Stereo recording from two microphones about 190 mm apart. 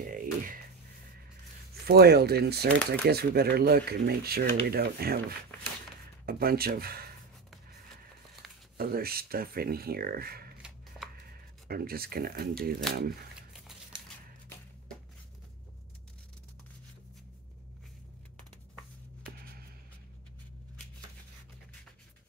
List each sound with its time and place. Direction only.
0.0 s a sound: 45° right (ahead or behind)
1.9 s speech: 55° right (ahead or behind)
6.2 s speech: 55° right (ahead or behind)
8.7 s speech: 50° right (ahead or behind)
11.6 s speech: 50° right (ahead or behind)